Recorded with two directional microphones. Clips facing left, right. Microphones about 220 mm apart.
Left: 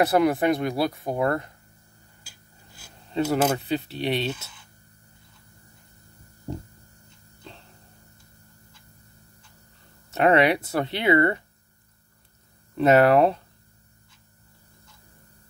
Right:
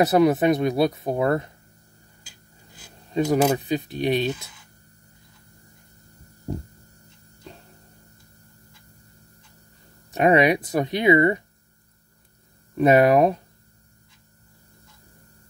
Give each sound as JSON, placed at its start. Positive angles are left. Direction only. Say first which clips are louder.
{"t": 0.0, "sound": "speech", "louder": "right 3 dB", "side_deg": -20}
{"t": 3.1, "sound": "speech", "louder": "right 3 dB", "side_deg": -15}
{"t": 10.1, "sound": "speech", "louder": "right 1 dB", "side_deg": -15}
{"t": 12.7, "sound": "speech", "louder": "right 1 dB", "side_deg": -15}